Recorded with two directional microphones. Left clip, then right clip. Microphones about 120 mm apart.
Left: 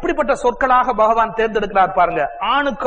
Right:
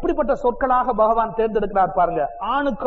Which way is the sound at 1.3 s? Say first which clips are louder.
Left 3 dB; 50° left (ahead or behind).